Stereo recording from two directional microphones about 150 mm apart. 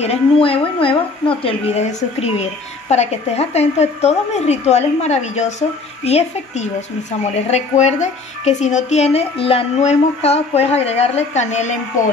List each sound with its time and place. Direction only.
0.0 s a woman's voice: 40° left (ahead or behind)